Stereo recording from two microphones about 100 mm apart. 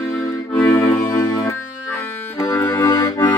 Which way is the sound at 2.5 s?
20° left (ahead or behind).